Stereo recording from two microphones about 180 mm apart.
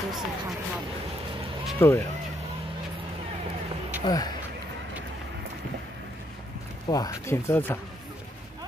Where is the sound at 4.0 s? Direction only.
20° left (ahead or behind).